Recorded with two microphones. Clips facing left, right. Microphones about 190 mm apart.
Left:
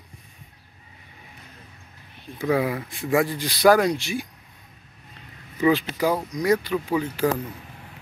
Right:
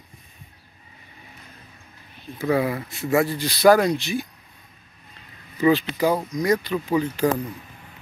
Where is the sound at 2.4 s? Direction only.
10° left (ahead or behind).